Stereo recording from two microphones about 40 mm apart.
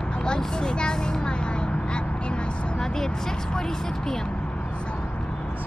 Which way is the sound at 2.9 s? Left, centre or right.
Centre.